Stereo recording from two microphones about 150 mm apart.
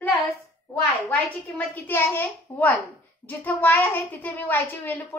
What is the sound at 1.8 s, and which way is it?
A child's voice, 15° left (ahead or behind).